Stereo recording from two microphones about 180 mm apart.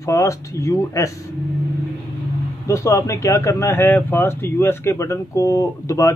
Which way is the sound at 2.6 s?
15° left (ahead or behind).